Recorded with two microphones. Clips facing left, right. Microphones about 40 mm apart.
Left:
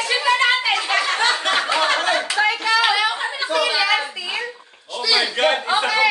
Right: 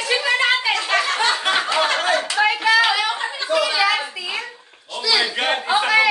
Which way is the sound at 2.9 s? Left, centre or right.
Centre.